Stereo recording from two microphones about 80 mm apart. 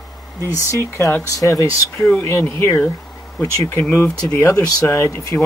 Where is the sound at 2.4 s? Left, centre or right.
Left.